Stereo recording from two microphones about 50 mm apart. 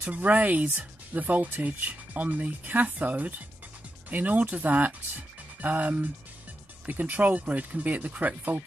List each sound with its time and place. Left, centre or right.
0.0 s speech: right